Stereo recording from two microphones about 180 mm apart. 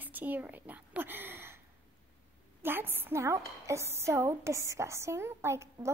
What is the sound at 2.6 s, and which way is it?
A woman's voice, 10° right (ahead or behind).